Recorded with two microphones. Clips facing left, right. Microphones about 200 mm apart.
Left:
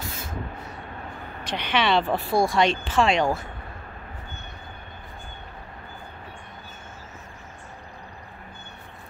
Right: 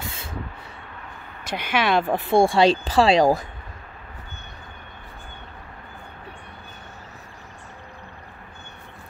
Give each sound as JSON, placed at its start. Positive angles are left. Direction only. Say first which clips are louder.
{"t": 1.4, "sound": "speech", "louder": "right 1 dB", "side_deg": -10}